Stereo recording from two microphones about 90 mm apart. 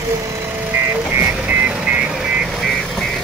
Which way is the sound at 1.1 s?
20° right (ahead or behind).